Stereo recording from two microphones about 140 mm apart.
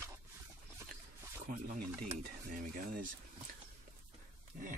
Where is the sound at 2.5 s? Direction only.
75° right (ahead or behind).